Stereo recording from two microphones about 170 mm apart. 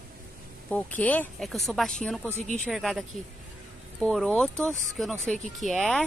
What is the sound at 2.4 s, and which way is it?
Speech, 45° left (ahead or behind).